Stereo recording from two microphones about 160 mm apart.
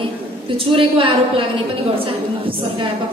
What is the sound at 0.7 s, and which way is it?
Speech, 35° right (ahead or behind).